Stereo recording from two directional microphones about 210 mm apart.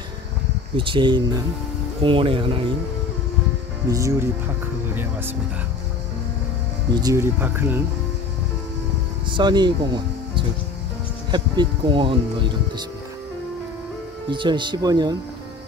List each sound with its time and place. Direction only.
0.7 s speech: 25° right (ahead or behind)
3.9 s speech: 15° right (ahead or behind)
6.9 s speech: 20° right (ahead or behind)
9.3 s speech: 20° right (ahead or behind)
14.3 s speech: 20° right (ahead or behind)